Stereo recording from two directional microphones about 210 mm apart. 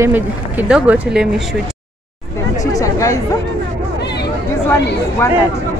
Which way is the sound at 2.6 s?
15° left (ahead or behind).